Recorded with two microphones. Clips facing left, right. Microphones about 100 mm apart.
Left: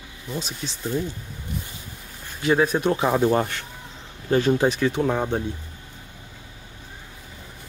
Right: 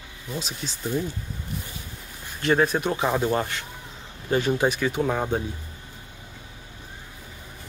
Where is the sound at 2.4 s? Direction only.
5° left (ahead or behind).